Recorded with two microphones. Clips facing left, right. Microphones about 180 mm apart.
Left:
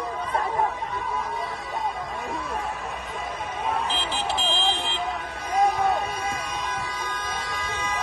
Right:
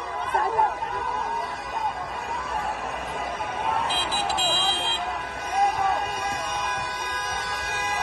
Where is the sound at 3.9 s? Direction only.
5° right (ahead or behind).